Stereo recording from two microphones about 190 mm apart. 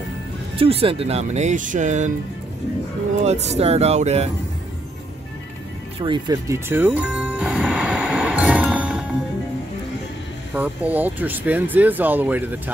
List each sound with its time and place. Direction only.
0.6 s speech: 30° right (ahead or behind)
3.3 s speech: 35° right (ahead or behind)
5.9 s music: 25° right (ahead or behind); by 9.0 s 5° right (ahead or behind)
10.5 s speech: 10° right (ahead or behind)